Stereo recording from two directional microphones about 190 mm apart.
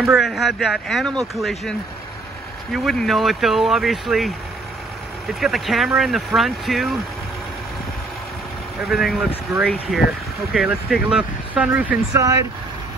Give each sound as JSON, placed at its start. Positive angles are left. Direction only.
{"t": 0.0, "sound": "speech", "side_deg": 0}
{"t": 5.4, "sound": "speech", "side_deg": 0}
{"t": 8.9, "sound": "speech", "side_deg": 0}
{"t": 12.1, "sound": "speech", "side_deg": -15}